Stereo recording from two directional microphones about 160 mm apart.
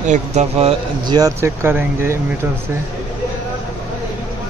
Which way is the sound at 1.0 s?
25° right (ahead or behind).